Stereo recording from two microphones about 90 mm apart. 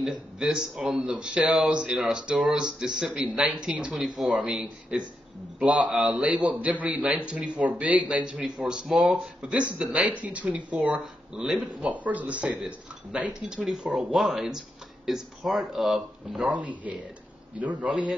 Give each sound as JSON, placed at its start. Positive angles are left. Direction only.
{"t": 0.0, "sound": "speech", "side_deg": -5}